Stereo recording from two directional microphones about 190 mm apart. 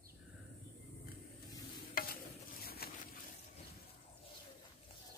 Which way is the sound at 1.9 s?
50° left (ahead or behind).